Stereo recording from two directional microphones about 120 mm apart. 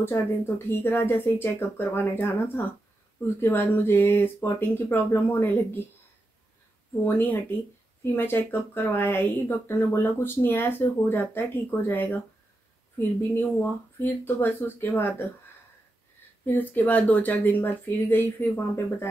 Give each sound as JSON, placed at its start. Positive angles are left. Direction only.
{"t": 0.7, "sound": "speech", "side_deg": 20}
{"t": 7.1, "sound": "speech", "side_deg": 20}
{"t": 16.4, "sound": "speech", "side_deg": 15}